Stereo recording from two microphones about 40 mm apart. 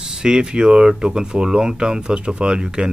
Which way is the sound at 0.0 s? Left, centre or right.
Centre.